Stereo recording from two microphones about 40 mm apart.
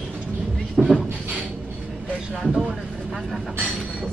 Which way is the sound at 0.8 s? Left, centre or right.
Centre.